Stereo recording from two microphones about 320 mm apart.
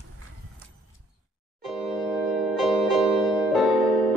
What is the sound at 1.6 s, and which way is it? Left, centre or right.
Music, centre.